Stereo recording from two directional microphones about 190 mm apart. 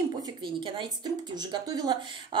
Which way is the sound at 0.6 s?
25° right (ahead or behind).